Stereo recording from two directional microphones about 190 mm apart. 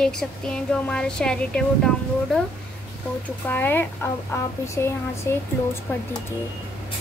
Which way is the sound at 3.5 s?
10° left (ahead or behind).